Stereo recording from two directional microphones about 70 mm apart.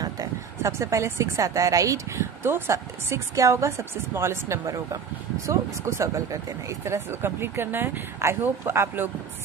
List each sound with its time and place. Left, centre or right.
0.6 s speech: right